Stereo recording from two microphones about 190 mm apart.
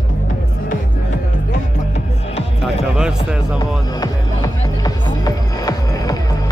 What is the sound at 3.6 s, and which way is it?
Music, 20° left (ahead or behind).